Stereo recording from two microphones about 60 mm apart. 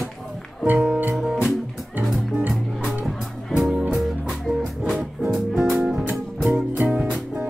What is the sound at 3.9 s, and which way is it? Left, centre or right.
Music, centre.